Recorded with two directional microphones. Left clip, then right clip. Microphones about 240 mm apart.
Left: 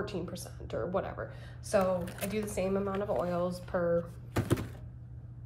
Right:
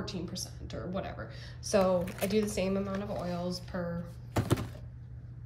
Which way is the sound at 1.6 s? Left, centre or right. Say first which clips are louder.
Right 2 dB; centre.